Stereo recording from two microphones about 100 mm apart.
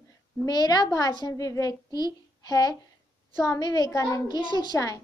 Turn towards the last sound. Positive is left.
turn(degrees=40)  # may be behind; listen again after turning